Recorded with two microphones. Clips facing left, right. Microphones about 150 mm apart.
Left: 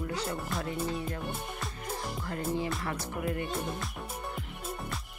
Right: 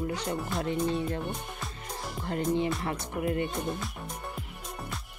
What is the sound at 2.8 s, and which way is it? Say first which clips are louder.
Music: right 3 dB; 25° right (ahead or behind).